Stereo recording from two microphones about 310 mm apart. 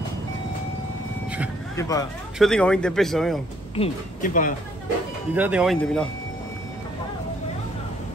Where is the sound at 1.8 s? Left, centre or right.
Centre.